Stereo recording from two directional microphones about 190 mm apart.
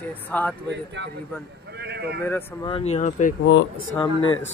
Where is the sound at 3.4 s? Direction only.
70° left (ahead or behind).